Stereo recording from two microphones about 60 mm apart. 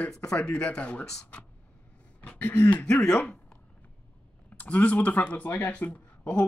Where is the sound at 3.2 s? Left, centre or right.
Left.